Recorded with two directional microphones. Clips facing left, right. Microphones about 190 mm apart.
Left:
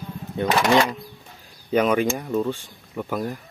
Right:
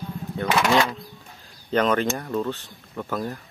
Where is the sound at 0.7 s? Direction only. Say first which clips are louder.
Left 2 dB; 15° left (ahead or behind).